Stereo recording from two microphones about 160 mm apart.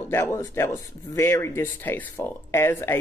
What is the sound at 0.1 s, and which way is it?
Speech, 15° left (ahead or behind).